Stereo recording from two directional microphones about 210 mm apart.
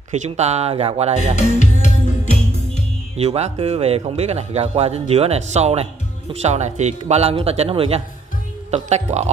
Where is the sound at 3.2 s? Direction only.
30° right (ahead or behind).